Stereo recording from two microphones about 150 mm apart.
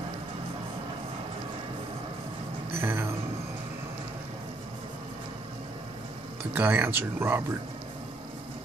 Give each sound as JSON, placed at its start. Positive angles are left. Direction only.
{"t": 2.8, "sound": "speech", "side_deg": -15}
{"t": 6.5, "sound": "speech", "side_deg": -15}